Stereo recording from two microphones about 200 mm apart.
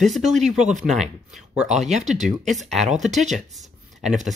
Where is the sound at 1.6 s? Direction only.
35° right (ahead or behind).